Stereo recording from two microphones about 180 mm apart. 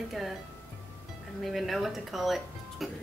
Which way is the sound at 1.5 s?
Centre (ahead or behind).